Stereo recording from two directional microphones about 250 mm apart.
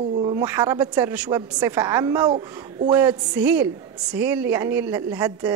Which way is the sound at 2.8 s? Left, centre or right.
Centre.